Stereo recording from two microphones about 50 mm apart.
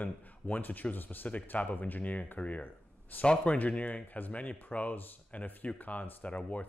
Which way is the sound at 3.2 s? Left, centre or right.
Left.